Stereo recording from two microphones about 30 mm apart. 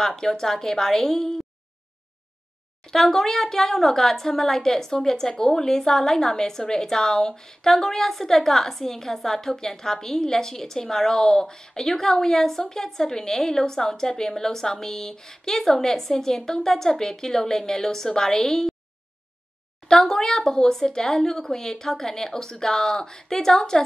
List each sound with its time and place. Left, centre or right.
0.0 s a woman's voice: centre
2.9 s a woman's voice: centre
19.9 s speech: left